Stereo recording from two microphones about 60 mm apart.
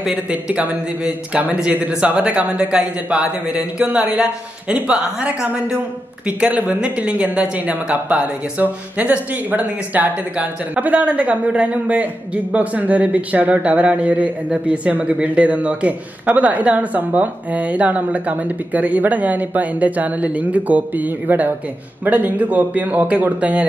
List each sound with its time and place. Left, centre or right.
0.0 s speech: centre